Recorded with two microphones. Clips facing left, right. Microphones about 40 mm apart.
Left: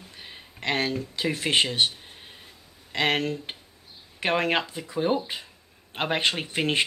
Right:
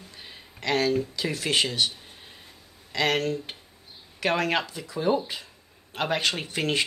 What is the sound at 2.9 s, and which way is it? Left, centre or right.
Speech, left.